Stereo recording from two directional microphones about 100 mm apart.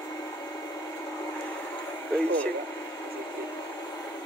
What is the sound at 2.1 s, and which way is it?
Speech, 10° left (ahead or behind).